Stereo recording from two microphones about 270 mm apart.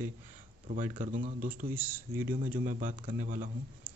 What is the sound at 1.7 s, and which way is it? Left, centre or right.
Speech, centre.